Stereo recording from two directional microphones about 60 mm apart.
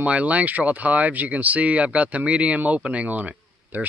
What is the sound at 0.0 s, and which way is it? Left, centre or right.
Speech, right.